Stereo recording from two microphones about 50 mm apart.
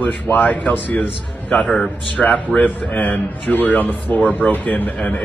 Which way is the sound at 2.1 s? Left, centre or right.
Left.